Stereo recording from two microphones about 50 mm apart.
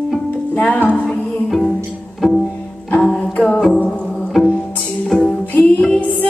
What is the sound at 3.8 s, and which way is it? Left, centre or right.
Music, centre.